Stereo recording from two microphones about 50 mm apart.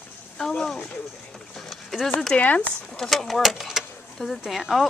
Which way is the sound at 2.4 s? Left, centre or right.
Left.